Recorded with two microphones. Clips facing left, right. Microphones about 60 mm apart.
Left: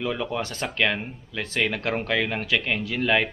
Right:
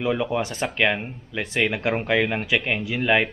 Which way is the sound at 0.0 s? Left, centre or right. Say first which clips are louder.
Right 4 dB; centre.